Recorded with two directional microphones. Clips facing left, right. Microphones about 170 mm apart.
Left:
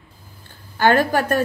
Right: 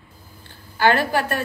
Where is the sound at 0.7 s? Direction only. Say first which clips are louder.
Left 2 dB; 45° left (ahead or behind).